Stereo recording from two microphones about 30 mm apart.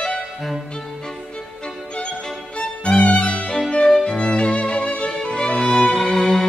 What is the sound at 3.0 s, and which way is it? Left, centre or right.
Music, left.